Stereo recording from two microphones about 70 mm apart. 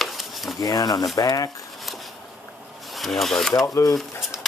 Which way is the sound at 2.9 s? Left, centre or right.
Centre.